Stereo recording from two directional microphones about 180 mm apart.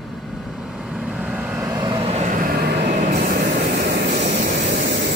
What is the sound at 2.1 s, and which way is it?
Vehicle, 40° right (ahead or behind).